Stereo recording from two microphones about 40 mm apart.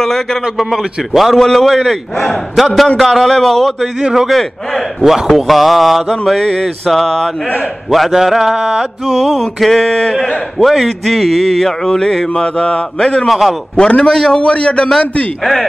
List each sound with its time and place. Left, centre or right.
0.0 s a sound: centre
0.6 s mantra: centre
4.1 s mantra: centre
8.5 s mantra: centre
9.4 s mantra: centre
12.5 s a man's voice: left
13.3 s mantra: centre
13.7 s a man's voice: left
14.4 s speech: left